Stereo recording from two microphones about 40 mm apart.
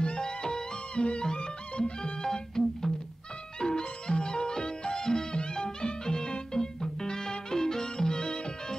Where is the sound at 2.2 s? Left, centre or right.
Centre.